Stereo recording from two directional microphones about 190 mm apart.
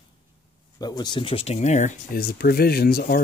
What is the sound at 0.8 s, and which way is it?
Speech, 20° left (ahead or behind).